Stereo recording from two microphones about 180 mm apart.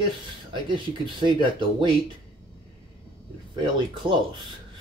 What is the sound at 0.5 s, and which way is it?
Speech, 25° right (ahead or behind).